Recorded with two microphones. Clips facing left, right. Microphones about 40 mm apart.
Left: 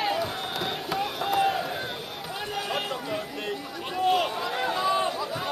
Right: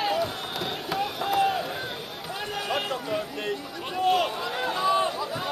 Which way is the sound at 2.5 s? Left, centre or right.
Centre.